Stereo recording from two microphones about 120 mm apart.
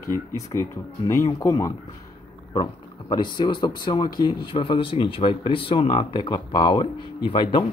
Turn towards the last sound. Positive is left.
turn(degrees=40)  # may be behind; listen again after turning